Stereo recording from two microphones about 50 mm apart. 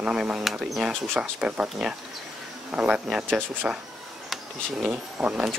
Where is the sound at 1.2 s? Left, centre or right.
Right.